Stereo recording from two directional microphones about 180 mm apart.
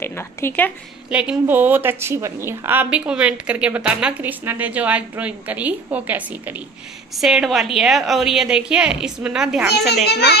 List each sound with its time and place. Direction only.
0.0 s speech: 15° left (ahead or behind)
1.1 s a woman's voice: 10° right (ahead or behind)
10.0 s a child's voice: 65° left (ahead or behind)